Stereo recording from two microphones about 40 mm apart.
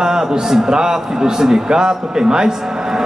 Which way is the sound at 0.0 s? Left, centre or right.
Centre.